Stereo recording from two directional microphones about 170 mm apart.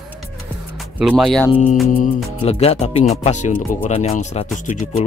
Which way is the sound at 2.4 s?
35° left (ahead or behind).